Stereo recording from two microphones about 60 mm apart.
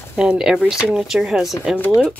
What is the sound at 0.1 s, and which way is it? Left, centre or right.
Speech, centre.